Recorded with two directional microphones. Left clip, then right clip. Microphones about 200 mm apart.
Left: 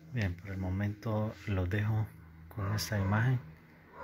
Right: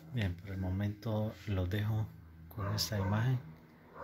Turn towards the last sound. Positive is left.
turn(degrees=10)  # may be behind; listen again after turning